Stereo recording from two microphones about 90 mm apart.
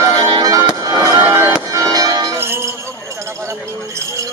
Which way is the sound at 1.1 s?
25° right (ahead or behind).